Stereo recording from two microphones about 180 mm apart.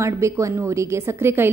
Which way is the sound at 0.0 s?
15° right (ahead or behind).